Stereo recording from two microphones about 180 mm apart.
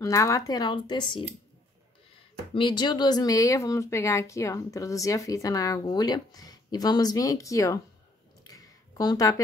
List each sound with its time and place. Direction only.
0.0 s speech: 20° left (ahead or behind)
2.5 s speech: 25° left (ahead or behind)
8.5 s a sound: 20° left (ahead or behind)